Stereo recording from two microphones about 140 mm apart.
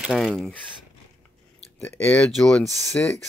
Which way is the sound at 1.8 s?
15° left (ahead or behind).